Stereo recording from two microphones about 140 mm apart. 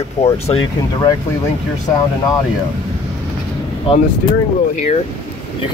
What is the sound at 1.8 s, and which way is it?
Speech, 25° left (ahead or behind).